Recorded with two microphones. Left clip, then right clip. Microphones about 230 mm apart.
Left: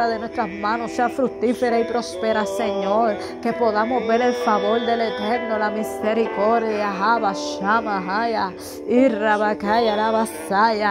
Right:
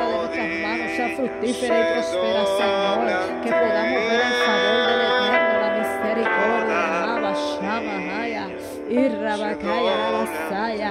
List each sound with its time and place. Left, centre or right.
1.0 s speech: right
2.6 s speech: right
8.9 s speech: centre